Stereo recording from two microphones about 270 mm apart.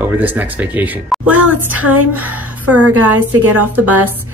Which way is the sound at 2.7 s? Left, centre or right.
Right.